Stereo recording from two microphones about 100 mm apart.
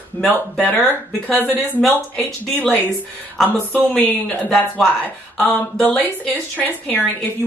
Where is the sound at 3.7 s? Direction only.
15° left (ahead or behind).